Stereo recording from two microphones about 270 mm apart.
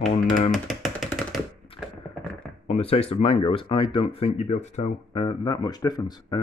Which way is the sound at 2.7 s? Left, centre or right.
Left.